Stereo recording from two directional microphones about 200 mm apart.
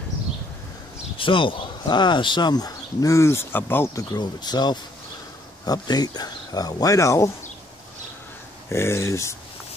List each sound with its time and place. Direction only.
1.1 s speech: 25° left (ahead or behind)
8.6 s speech: 10° left (ahead or behind)